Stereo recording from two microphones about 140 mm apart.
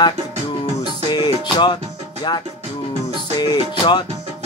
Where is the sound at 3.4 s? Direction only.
30° left (ahead or behind).